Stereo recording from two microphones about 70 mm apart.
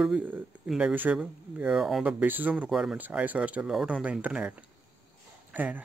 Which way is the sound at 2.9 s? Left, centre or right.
Right.